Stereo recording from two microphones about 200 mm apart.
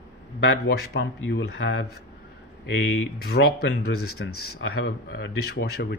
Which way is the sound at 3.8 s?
90° left.